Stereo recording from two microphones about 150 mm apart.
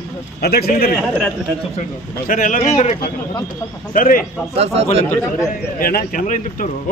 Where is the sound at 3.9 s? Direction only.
70° left (ahead or behind).